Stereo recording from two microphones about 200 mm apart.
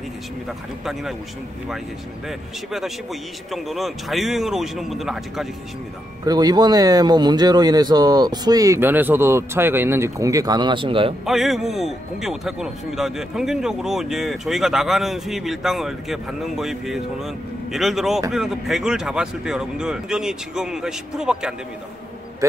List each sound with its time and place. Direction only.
2.2 s a man's voice: centre (ahead or behind)
6.2 s speech: 20° right (ahead or behind)
11.2 s a man's voice: centre (ahead or behind)
22.4 s a man's voice: 15° right (ahead or behind)